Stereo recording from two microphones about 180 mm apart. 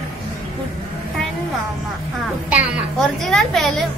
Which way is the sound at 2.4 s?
5° right (ahead or behind).